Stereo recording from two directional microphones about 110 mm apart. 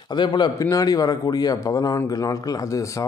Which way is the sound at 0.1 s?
45° left (ahead or behind).